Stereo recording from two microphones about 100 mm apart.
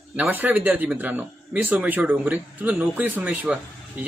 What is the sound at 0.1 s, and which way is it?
A man's voice, 15° right (ahead or behind).